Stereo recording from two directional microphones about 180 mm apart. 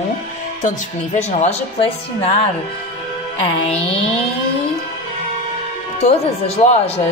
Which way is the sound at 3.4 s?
35° left (ahead or behind).